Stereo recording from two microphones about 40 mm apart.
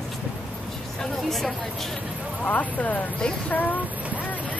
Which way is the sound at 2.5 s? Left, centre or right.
Left.